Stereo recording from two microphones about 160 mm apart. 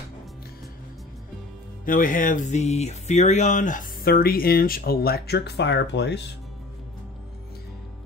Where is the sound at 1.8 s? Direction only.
60° left (ahead or behind); by 6.2 s 90° left.